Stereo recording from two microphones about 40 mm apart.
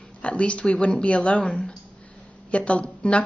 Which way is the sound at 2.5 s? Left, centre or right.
Left.